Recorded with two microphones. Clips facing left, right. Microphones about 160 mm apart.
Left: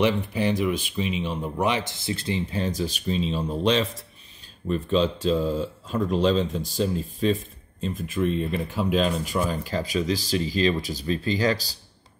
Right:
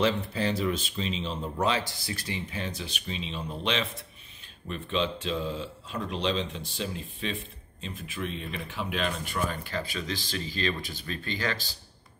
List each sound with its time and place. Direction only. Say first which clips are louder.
0.0 s speech: left 4 dB; 15° left (ahead or behind); by 11.7 s 40° left (ahead or behind)